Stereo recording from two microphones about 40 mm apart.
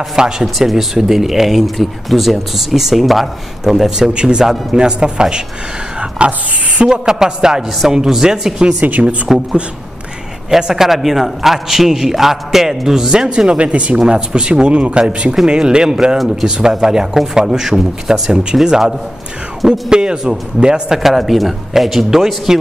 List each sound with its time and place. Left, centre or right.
0.1 s a man's voice: centre
0.6 s a man's voice: centre
4.1 s speech: right
5.9 s a sound: right
6.8 s a man's voice: centre
8.7 s speech: right
9.3 s a man's voice: centre
10.5 s a man's voice: centre
19.9 s speech: centre
20.9 s a man's voice: centre